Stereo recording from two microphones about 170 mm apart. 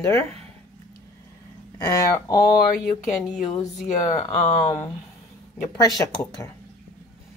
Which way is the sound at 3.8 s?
40° left (ahead or behind).